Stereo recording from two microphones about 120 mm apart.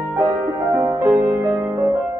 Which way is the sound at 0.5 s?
25° right (ahead or behind).